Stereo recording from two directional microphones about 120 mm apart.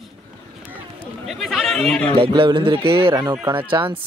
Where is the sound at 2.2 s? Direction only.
45° right (ahead or behind).